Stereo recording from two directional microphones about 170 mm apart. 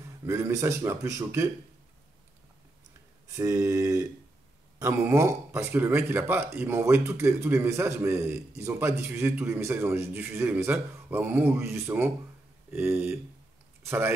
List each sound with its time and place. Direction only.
0.2 s speech: 15° right (ahead or behind)
3.3 s speech: 15° right (ahead or behind)